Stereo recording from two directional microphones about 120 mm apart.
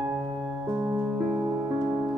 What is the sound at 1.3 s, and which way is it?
Music, 40° right (ahead or behind).